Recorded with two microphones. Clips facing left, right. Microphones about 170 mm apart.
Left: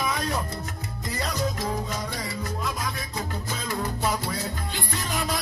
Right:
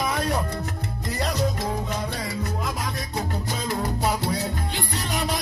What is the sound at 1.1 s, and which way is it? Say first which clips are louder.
Music: right 3 dB; 65° right (ahead or behind).